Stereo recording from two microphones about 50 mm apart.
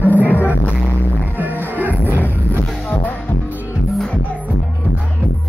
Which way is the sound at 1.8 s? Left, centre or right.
Right.